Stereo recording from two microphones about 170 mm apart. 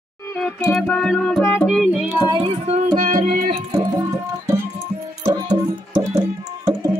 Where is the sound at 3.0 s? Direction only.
55° right (ahead or behind).